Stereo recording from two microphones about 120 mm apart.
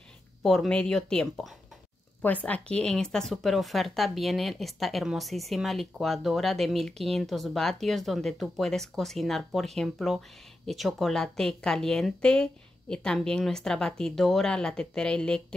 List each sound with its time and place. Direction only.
0.4 s a woman's voice: centre (ahead or behind)